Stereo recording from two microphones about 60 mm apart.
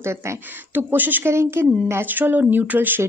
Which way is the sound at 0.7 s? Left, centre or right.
Right.